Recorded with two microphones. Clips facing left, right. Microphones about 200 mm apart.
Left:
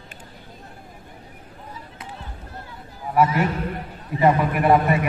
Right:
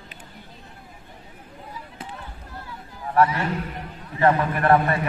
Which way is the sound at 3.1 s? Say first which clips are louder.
Left 1 dB; 15° left (ahead or behind).